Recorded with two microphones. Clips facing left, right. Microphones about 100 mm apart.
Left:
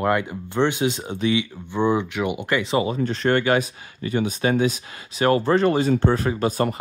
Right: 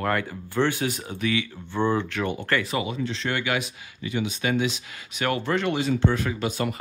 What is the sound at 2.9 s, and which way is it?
Speech, 45° left (ahead or behind).